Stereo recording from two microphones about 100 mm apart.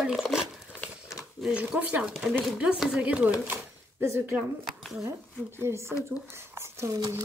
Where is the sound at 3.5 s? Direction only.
25° right (ahead or behind).